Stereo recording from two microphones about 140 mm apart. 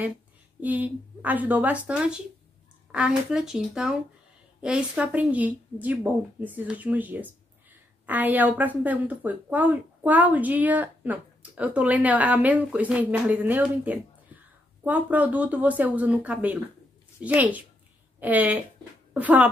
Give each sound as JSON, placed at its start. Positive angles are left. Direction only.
{"t": 0.6, "sound": "a woman's voice", "side_deg": -10}